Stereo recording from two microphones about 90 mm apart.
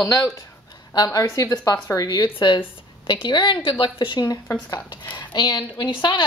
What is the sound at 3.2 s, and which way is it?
Speech, 55° left (ahead or behind).